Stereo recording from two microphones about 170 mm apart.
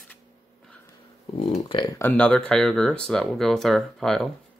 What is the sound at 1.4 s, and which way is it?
Speech, 30° left (ahead or behind).